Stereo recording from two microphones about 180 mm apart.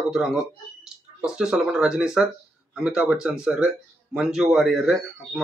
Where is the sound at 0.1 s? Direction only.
5° right (ahead or behind).